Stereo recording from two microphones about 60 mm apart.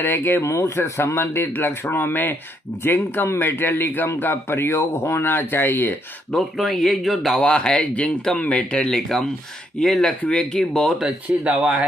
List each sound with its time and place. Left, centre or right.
0.0 s speech: left
0.4 s speech: left
6.3 s speech: centre
7.4 s speech: centre
9.8 s speech: centre
10.0 s speech: centre
11.0 s speech: centre